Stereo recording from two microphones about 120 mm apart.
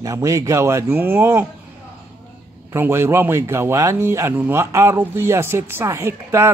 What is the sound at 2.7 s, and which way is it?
Speech, 20° right (ahead or behind).